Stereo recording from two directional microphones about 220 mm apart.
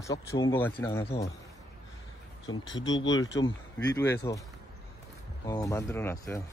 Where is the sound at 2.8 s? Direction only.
60° left (ahead or behind).